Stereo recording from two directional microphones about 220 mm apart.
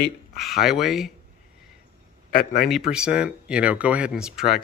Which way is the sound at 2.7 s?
5° right (ahead or behind).